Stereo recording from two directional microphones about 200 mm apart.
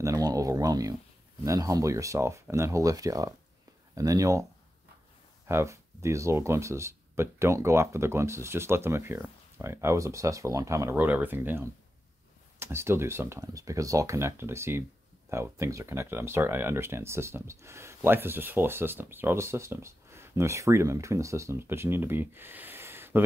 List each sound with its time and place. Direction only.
0.0 s a sound: 15° right (ahead or behind)
1.4 s speech: 15° right (ahead or behind)
5.5 s speech: 15° right (ahead or behind)